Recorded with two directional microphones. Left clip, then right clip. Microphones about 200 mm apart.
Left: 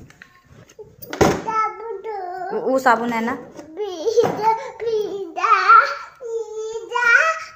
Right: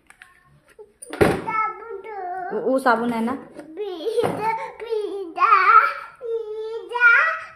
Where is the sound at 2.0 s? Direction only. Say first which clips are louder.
Even; 15° right (ahead or behind).